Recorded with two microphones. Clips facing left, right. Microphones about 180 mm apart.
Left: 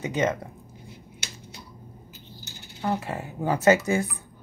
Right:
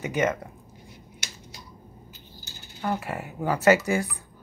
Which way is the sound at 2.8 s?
20° left (ahead or behind).